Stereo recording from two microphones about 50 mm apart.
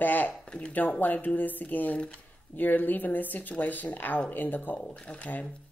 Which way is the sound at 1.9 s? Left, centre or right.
Left.